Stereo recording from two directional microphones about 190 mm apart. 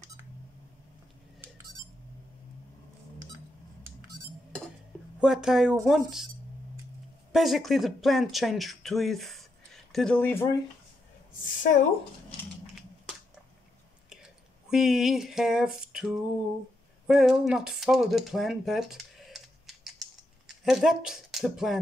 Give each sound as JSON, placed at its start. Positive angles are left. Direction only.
{"t": 5.2, "sound": "speech", "side_deg": -5}
{"t": 7.3, "sound": "speech", "side_deg": 0}
{"t": 11.6, "sound": "speech", "side_deg": 40}
{"t": 14.7, "sound": "speech", "side_deg": 0}